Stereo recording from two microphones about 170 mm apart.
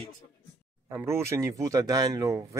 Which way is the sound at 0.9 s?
15° right (ahead or behind).